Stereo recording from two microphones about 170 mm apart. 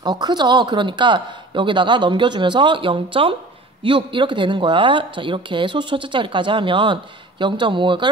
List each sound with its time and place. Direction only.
0.0 s speech: 25° right (ahead or behind)